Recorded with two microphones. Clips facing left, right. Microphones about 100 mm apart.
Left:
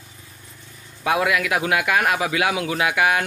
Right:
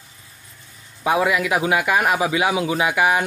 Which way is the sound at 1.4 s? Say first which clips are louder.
Right 2 dB; 10° right (ahead or behind).